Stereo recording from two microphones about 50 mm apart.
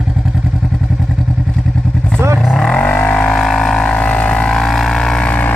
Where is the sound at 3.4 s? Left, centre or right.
Centre.